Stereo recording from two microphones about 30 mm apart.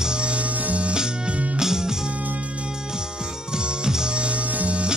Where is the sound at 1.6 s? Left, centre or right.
Centre.